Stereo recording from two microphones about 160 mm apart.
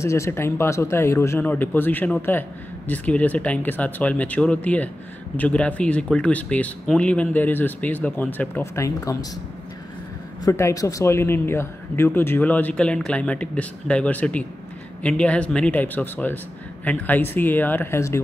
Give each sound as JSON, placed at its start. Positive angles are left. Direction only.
{"t": 0.0, "sound": "speech", "side_deg": 20}
{"t": 10.4, "sound": "speech", "side_deg": 20}